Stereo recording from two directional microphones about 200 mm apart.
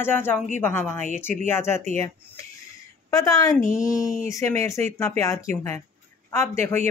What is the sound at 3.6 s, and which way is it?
Speech, 40° left (ahead or behind).